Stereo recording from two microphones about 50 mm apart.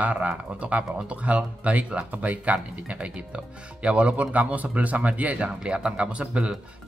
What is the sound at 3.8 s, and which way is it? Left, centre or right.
Speech, right.